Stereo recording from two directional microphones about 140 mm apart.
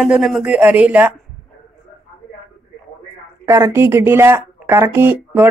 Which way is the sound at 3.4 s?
20° right (ahead or behind).